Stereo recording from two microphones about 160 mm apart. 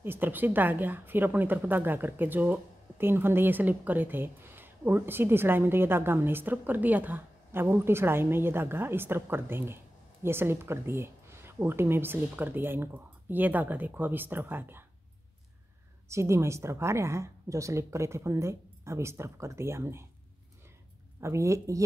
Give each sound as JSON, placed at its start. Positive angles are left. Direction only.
{"t": 0.0, "sound": "a woman's voice", "side_deg": -15}
{"t": 16.1, "sound": "a woman's voice", "side_deg": -15}
{"t": 21.2, "sound": "speech", "side_deg": -20}